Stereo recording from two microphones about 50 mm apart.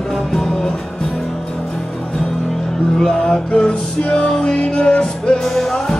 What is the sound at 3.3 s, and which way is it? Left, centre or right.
Music, centre.